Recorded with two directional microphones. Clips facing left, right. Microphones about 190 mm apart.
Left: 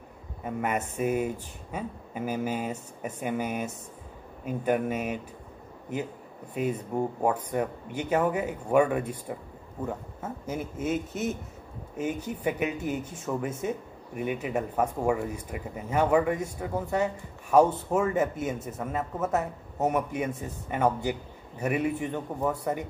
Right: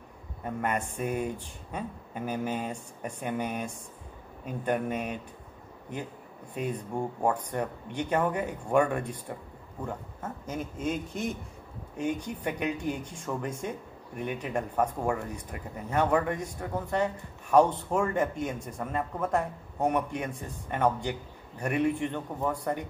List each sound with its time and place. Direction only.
0.4 s speech: 5° left (ahead or behind)
6.5 s speech: 5° left (ahead or behind)